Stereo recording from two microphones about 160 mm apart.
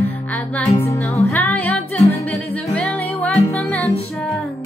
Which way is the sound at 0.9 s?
15° left (ahead or behind).